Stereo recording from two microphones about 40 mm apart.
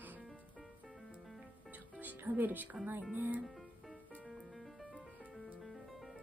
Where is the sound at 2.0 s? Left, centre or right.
Right.